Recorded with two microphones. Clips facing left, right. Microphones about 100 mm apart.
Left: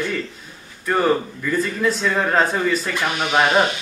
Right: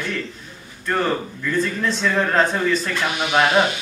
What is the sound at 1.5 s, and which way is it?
A man's voice, 5° left (ahead or behind).